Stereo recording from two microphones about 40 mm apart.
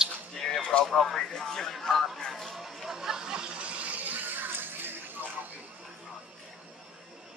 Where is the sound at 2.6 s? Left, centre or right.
Centre.